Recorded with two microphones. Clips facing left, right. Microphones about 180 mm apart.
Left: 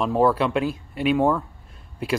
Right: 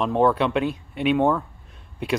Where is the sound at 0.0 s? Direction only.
5° left (ahead or behind).